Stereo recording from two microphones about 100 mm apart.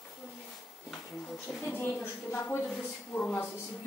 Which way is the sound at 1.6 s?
25° left (ahead or behind).